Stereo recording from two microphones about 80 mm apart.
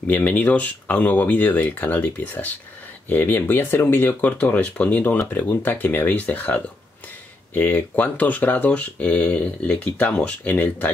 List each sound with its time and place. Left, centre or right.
0.0 s speech: left